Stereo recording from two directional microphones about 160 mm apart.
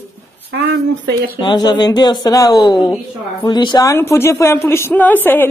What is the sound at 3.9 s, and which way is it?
A woman's voice, 15° left (ahead or behind).